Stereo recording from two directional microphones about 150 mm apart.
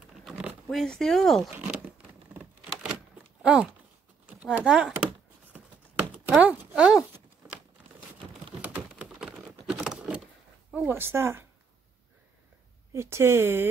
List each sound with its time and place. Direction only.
0.2 s zipper: 5° right (ahead or behind)
3.4 s speech: 5° right (ahead or behind)
5.5 s a sound: 10° right (ahead or behind)
8.5 s typing: 5° right (ahead or behind)
10.7 s speech: 10° right (ahead or behind)
12.9 s speech: 20° right (ahead or behind)